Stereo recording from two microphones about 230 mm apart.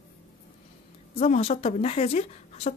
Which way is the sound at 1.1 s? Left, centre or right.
Left.